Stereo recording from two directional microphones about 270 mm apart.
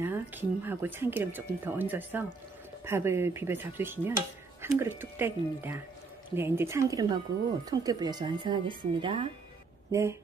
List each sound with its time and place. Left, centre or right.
0.0 s speech: centre